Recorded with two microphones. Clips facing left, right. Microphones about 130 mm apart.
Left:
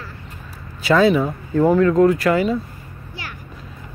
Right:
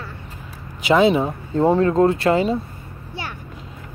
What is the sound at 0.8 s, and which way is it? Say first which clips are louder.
Speech: even; 20° right (ahead or behind).